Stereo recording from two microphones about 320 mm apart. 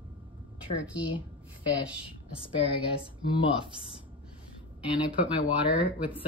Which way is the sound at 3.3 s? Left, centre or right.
Centre.